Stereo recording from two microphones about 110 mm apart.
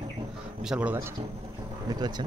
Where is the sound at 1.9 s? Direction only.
40° right (ahead or behind).